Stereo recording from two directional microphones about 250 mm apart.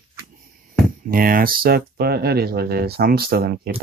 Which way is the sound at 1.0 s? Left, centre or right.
Right.